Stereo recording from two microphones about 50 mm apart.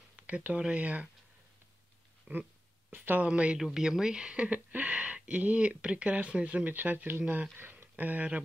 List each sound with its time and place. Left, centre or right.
0.1 s speech: right
2.3 s a sound: right
2.9 s speech: right
3.3 s speech: right
3.5 s speech: centre; by 8.4 s right